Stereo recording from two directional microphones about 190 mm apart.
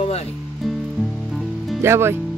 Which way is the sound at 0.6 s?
Centre (ahead or behind).